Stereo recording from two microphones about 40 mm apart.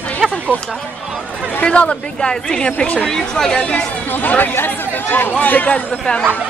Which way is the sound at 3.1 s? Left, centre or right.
Centre.